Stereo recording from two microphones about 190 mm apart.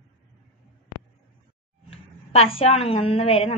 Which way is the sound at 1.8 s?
30° left (ahead or behind).